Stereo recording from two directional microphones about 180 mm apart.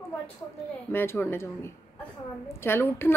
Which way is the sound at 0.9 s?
15° left (ahead or behind).